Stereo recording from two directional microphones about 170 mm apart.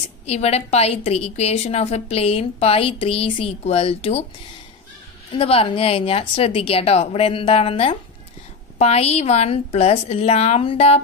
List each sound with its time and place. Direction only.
0.3 s a woman's voice: 40° left (ahead or behind)
5.3 s a woman's voice: 35° left (ahead or behind)